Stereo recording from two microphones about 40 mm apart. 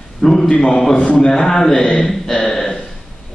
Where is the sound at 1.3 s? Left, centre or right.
Centre.